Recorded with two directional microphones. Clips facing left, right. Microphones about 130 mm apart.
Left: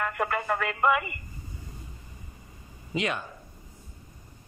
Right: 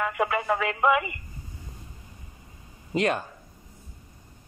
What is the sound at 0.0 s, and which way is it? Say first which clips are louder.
Speech: right 3 dB; centre (ahead or behind).